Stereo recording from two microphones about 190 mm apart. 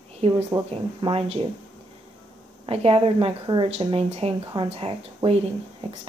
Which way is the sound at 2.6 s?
30° right (ahead or behind).